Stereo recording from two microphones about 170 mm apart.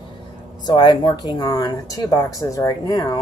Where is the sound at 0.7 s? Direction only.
25° left (ahead or behind).